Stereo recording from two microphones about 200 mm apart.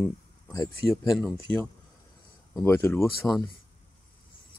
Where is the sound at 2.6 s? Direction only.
10° left (ahead or behind).